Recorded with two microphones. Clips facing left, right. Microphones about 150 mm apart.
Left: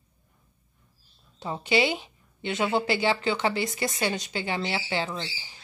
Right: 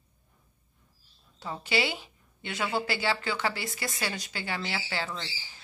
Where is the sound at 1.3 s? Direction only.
20° left (ahead or behind).